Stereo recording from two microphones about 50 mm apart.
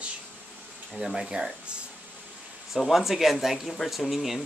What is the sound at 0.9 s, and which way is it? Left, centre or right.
Speech, centre.